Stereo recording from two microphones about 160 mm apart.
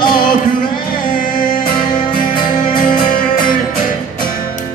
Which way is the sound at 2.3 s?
30° left (ahead or behind).